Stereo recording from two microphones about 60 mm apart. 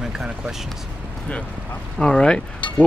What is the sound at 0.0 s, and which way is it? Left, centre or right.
Speech, centre.